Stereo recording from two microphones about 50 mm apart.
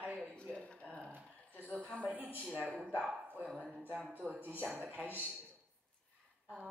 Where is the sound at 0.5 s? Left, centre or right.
Left.